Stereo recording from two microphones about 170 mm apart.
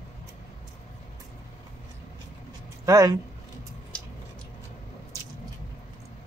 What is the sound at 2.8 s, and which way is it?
Speech, 20° right (ahead or behind).